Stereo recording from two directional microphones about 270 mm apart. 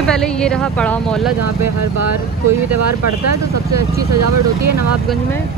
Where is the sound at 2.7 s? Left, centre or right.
Right.